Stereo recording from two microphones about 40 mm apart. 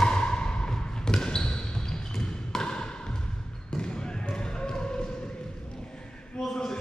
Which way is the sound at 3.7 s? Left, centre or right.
Centre.